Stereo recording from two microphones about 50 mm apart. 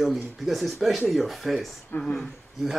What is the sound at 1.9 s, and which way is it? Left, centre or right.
Speech, left.